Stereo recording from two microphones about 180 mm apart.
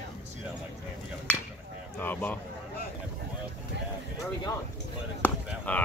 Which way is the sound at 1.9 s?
10° left (ahead or behind).